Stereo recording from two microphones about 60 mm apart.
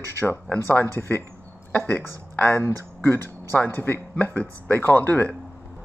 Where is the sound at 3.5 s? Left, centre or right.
Left.